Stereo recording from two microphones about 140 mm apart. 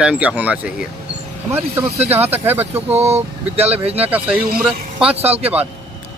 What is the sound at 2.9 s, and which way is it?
Speech, 50° right (ahead or behind).